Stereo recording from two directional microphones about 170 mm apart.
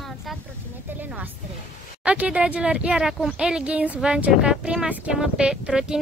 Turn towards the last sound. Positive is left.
turn(degrees=-5)  # may be behind; listen again after turning